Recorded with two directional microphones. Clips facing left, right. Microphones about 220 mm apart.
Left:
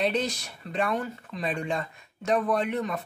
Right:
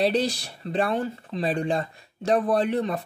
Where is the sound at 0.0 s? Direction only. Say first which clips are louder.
Right 4 dB; 35° right (ahead or behind).